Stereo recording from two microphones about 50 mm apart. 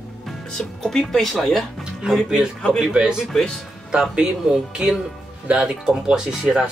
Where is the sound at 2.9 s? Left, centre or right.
Centre.